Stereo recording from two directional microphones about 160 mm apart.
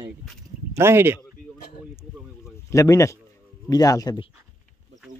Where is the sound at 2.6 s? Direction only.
20° left (ahead or behind).